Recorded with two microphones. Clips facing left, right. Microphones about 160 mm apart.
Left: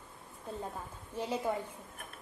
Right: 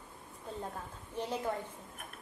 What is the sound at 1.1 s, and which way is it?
Speech, 10° left (ahead or behind).